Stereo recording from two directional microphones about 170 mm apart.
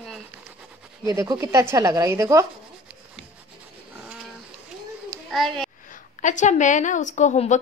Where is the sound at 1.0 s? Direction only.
20° right (ahead or behind).